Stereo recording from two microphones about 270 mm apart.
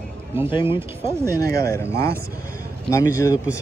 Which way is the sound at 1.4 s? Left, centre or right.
Right.